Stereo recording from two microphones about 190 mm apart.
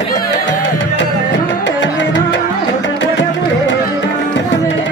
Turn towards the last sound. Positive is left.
turn(degrees=75)  # may be behind; listen again after turning